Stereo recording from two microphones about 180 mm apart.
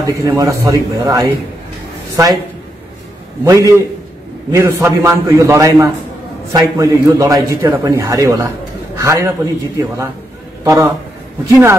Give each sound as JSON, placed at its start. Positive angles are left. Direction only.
{"t": 0.0, "sound": "a man's voice", "side_deg": -15}
{"t": 3.4, "sound": "a man's voice", "side_deg": -15}